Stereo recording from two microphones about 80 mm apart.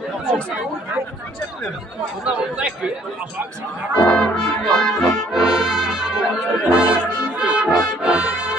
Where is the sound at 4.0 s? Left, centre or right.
Centre.